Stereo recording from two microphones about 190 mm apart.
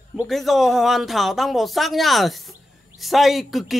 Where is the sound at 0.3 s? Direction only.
Centre (ahead or behind).